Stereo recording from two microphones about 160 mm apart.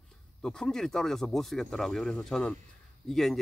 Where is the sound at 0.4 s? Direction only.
5° left (ahead or behind).